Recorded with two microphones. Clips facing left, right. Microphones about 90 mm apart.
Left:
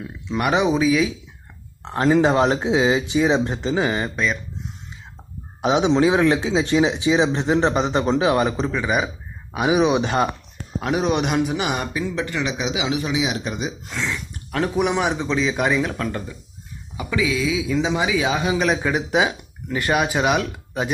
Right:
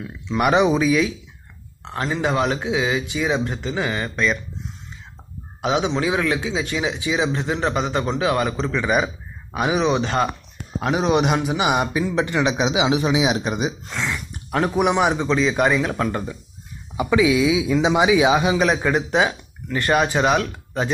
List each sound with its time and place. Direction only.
0.4 s speech: 5° right (ahead or behind)
2.2 s a man's voice: 30° left (ahead or behind)
5.6 s a man's voice: 20° left (ahead or behind)
8.8 s speech: centre (ahead or behind)
10.8 s a man's voice: centre (ahead or behind); by 13.7 s 15° right (ahead or behind)
13.8 s speech: 5° right (ahead or behind)
15.9 s a man's voice: 15° right (ahead or behind)
18.5 s speech: centre (ahead or behind)